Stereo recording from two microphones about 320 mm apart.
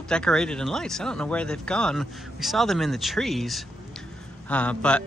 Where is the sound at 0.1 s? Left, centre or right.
Centre.